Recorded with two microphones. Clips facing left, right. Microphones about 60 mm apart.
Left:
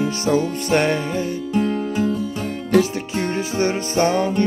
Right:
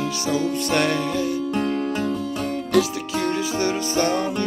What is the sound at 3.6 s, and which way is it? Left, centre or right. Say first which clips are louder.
Music: left 5 dB; left.